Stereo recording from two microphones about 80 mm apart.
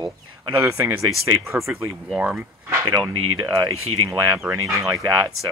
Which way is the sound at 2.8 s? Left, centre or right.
Right.